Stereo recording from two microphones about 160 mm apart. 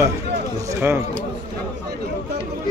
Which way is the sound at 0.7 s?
15° right (ahead or behind).